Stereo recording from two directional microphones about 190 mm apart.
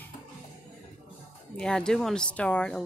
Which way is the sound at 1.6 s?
5° left (ahead or behind).